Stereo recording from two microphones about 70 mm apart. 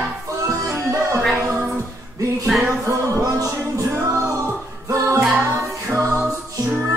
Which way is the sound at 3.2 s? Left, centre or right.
Right.